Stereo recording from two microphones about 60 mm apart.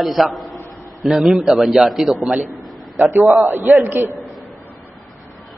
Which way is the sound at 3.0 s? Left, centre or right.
Right.